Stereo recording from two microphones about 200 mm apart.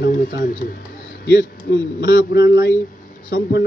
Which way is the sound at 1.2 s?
60° left (ahead or behind).